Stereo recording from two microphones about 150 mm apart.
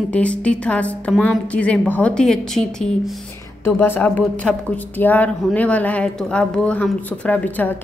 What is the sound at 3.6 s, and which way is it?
A woman's voice, 15° left (ahead or behind).